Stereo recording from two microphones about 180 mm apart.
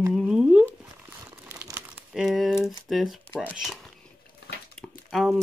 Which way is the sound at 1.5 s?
15° right (ahead or behind).